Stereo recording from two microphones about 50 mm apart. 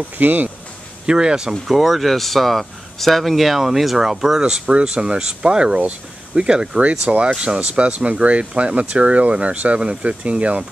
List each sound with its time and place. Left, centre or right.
0.2 s speech: right
1.0 s speech: centre
1.7 s speech: centre
5.8 s speech: right
6.4 s speech: centre
6.8 s speech: right